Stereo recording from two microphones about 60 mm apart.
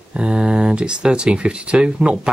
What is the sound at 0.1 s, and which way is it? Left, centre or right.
Speech, centre.